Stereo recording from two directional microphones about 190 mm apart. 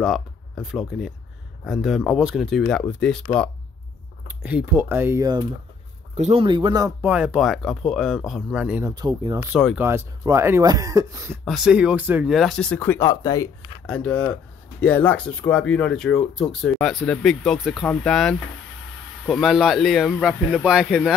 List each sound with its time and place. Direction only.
0.0 s speech: centre (ahead or behind)
4.3 s speech: 5° right (ahead or behind)
6.1 s speech: 35° right (ahead or behind)
7.0 s speech: 5° right (ahead or behind)
8.9 s speech: 20° right (ahead or behind)
11.4 s speech: 5° right (ahead or behind); by 13.5 s 20° left (ahead or behind)
13.8 s speech: 5° left (ahead or behind)